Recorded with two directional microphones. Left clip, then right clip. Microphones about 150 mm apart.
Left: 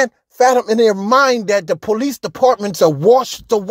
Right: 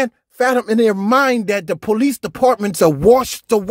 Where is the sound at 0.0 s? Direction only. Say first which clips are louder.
Left 4 dB; 15° right (ahead or behind).